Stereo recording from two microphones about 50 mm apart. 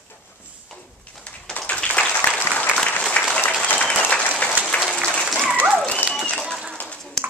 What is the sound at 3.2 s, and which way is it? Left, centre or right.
Applause, left.